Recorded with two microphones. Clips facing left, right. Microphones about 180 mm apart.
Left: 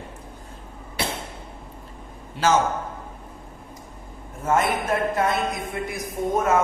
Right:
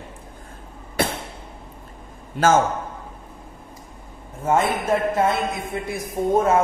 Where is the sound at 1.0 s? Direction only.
50° right (ahead or behind).